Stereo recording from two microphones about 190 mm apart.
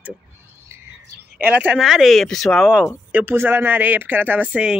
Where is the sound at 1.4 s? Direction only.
10° right (ahead or behind).